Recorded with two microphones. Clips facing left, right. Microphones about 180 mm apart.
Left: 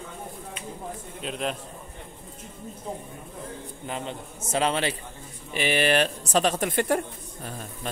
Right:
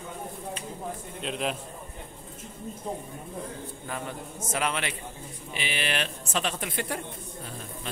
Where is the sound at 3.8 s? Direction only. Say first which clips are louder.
Left 3 dB; 20° left (ahead or behind).